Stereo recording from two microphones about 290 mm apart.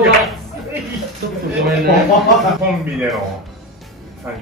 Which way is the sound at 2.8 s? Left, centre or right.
Centre.